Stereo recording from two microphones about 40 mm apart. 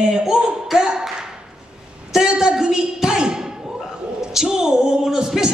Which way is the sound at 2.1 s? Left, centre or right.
Centre.